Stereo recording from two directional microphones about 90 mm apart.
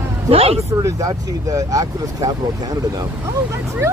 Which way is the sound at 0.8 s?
40° right (ahead or behind).